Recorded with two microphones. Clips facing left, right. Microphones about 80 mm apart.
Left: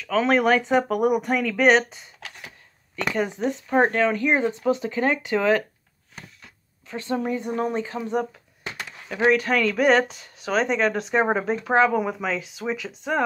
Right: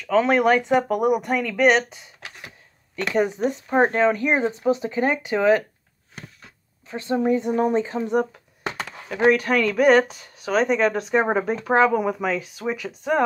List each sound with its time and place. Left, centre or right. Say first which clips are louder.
0.0 s speech: right 2 dB; centre
3.4 s speech: right 1 dB; centre
6.9 s speech: right 5 dB; right
7.4 s speech: right 4 dB; centre
7.7 s speech: right 4 dB; right
9.2 s speech: right 2 dB; centre
10.0 s speech: left 1 dB; right
10.4 s speech: right 2 dB; centre